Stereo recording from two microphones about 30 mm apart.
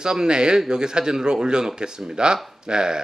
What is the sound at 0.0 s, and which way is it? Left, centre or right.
A man's voice, right.